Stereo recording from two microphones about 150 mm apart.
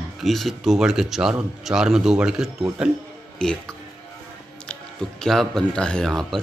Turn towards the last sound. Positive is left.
turn(degrees=0)  # may be behind; listen again after turning